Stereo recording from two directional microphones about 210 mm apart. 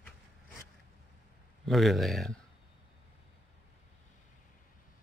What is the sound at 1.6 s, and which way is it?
Speech, centre (ahead or behind).